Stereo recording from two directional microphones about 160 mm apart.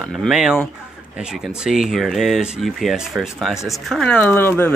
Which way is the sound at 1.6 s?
Centre (ahead or behind).